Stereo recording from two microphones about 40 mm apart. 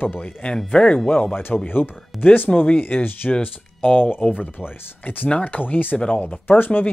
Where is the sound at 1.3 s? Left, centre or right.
Left.